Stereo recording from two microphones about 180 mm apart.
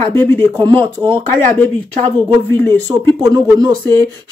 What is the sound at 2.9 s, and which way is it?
Speech, 20° right (ahead or behind).